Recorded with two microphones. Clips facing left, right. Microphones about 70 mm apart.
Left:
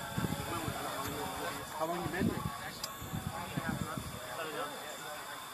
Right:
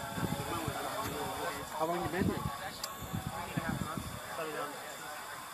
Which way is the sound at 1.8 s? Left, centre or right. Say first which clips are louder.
Right 3 dB; right.